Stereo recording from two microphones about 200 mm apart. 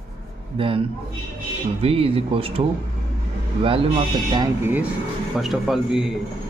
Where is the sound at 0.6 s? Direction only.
25° right (ahead or behind).